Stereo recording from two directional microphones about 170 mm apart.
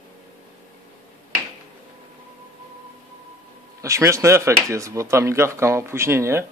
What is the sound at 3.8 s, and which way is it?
Speech, 15° right (ahead or behind).